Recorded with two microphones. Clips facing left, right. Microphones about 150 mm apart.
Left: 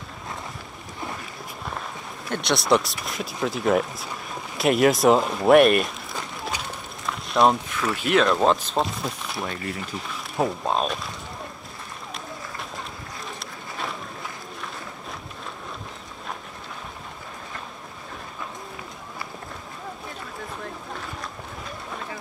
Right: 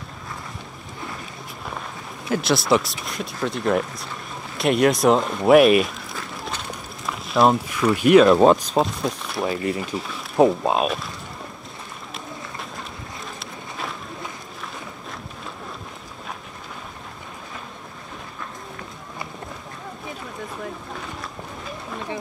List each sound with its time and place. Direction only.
2.2 s speech: centre (ahead or behind)
7.1 s speech: centre (ahead or behind)
10.3 s speech: 20° right (ahead or behind)
13.4 s run: centre (ahead or behind)
20.9 s boat: centre (ahead or behind)